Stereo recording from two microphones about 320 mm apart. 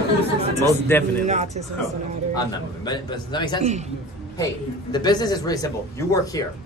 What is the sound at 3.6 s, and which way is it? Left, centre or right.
Speech, right.